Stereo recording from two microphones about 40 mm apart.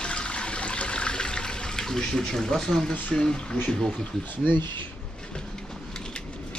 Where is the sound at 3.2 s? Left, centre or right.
Centre.